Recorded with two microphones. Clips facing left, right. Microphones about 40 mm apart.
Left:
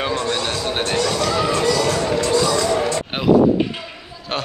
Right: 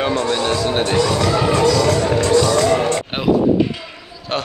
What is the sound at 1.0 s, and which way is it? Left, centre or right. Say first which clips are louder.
Speech: right 2 dB; centre.